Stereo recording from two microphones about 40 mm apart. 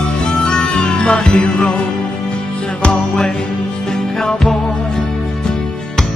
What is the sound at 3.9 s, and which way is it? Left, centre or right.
Music, centre.